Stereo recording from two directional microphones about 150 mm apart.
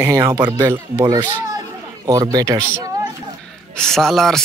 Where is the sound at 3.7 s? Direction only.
5° left (ahead or behind).